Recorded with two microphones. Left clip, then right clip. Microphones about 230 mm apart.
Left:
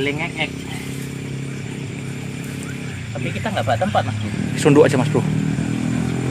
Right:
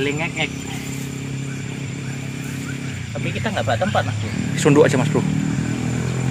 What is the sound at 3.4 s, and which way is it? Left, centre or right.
Speech, centre.